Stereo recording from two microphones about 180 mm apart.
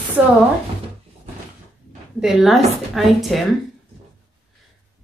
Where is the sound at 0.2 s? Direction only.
5° right (ahead or behind).